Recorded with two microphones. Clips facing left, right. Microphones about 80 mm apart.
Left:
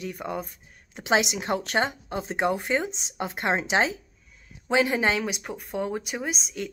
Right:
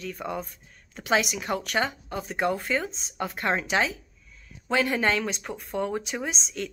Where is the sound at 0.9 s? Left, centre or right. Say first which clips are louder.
Left 1 dB; left.